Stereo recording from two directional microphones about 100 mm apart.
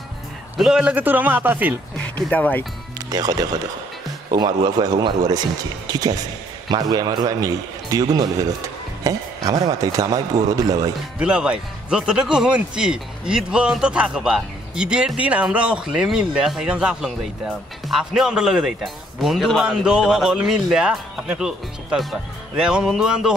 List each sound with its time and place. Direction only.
0.6 s speech: 10° right (ahead or behind)
2.2 s speech: 15° left (ahead or behind)
3.1 s a man's voice: 40° right (ahead or behind)
11.1 s speech: 10° right (ahead or behind)